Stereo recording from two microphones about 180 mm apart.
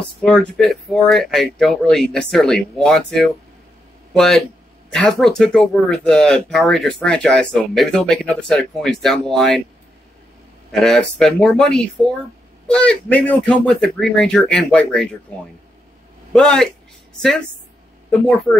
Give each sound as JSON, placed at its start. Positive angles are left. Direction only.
{"t": 0.2, "sound": "speech", "side_deg": 5}
{"t": 10.7, "sound": "speech", "side_deg": 5}